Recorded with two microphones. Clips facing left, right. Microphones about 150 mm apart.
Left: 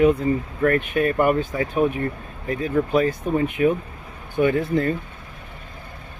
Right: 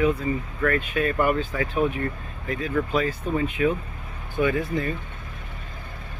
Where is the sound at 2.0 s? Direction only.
30° left (ahead or behind).